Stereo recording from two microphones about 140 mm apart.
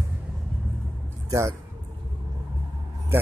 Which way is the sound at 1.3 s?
20° right (ahead or behind).